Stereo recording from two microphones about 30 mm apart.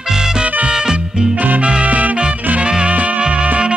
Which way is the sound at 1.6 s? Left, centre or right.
Right.